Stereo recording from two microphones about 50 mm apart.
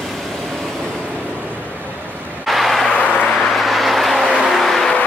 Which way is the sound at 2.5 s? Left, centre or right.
Centre.